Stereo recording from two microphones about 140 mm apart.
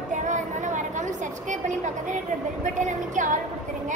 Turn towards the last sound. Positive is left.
turn(degrees=-65)  # may be behind; listen again after turning